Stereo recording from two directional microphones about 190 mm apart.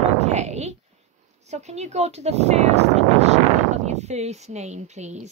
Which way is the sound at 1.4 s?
35° right (ahead or behind).